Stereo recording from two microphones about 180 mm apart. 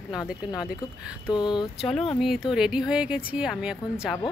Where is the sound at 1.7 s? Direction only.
Centre (ahead or behind).